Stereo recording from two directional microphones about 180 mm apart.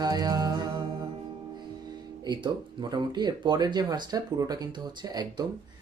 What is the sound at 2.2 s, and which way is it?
Speech, 25° right (ahead or behind).